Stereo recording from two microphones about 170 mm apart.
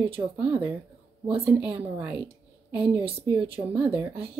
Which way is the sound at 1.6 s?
5° right (ahead or behind).